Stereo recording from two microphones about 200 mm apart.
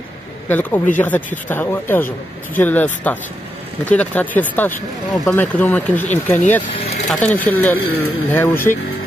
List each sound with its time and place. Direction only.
0.5 s speech: 10° left (ahead or behind)